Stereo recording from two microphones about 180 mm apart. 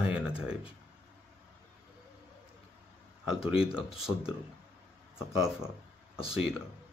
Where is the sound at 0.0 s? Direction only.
5° right (ahead or behind).